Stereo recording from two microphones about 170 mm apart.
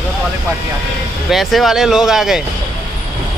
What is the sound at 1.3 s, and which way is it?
Speech, centre (ahead or behind).